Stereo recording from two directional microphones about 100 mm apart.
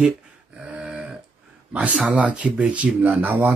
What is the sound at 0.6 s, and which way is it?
Dog, 10° right (ahead or behind).